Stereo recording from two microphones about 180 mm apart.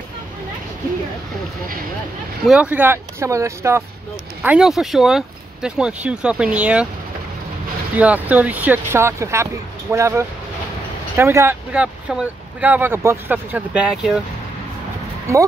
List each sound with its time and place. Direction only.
2.4 s speech: 5° right (ahead or behind)
8.0 s speech: 10° right (ahead or behind)
15.3 s speech: 15° right (ahead or behind)